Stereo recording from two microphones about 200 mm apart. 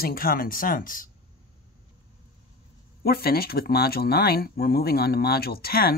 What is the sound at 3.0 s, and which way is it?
Speech, 50° left (ahead or behind).